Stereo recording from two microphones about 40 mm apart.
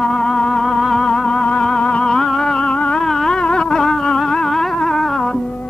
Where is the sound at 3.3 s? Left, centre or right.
Left.